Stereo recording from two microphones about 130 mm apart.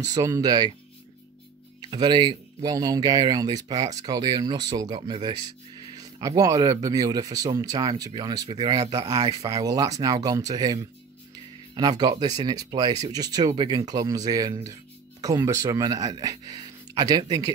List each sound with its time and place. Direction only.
0.0 s speech: 25° right (ahead or behind)
1.8 s speech: 35° right (ahead or behind)